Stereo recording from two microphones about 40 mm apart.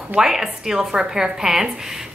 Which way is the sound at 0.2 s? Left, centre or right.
Centre.